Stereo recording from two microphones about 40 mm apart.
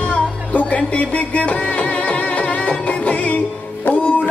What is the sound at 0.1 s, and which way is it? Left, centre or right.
Music, left.